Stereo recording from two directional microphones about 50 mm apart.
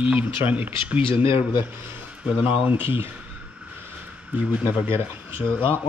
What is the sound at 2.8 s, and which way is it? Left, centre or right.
Speech, right.